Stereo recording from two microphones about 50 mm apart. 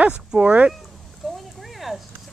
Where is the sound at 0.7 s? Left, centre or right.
Centre.